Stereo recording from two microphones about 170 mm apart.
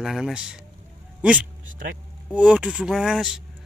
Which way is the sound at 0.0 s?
5° right (ahead or behind).